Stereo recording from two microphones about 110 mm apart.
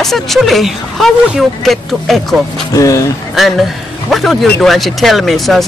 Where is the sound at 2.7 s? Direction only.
30° left (ahead or behind).